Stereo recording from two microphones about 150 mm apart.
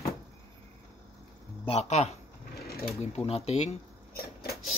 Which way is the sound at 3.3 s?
45° left (ahead or behind).